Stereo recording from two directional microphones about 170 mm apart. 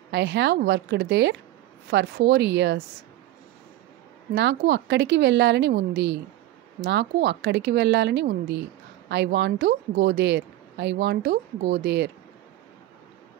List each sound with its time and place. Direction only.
0.1 s speech: 85° right
1.9 s speech: 80° right
4.4 s speech: 90° right; by 12.1 s 75° right (ahead or behind)